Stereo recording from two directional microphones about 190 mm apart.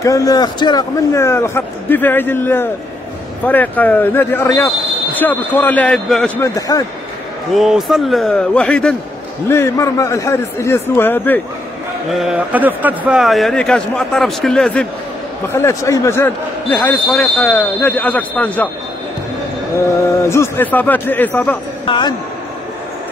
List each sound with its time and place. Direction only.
0.0 s speech: 20° left (ahead or behind)
7.5 s a man's voice: centre (ahead or behind)
12.1 s a man's voice: centre (ahead or behind)
20.2 s speech: 10° left (ahead or behind)
21.8 s a man's voice: 25° left (ahead or behind)